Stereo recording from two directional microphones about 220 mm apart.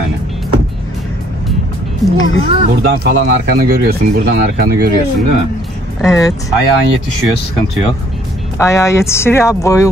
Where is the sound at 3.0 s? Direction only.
45° right (ahead or behind).